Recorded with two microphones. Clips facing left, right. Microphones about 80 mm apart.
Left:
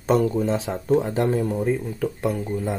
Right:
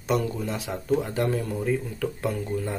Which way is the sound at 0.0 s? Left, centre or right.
Left.